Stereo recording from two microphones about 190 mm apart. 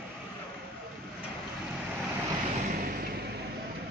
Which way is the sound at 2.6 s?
50° right (ahead or behind).